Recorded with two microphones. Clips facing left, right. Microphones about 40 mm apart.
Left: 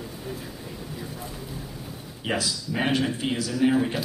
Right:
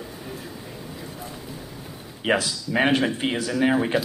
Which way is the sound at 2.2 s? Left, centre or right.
Right.